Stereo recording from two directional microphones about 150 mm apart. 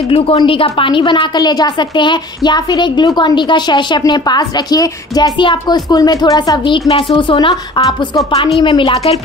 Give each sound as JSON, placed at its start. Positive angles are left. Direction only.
{"t": 0.1, "sound": "a woman's voice", "side_deg": 40}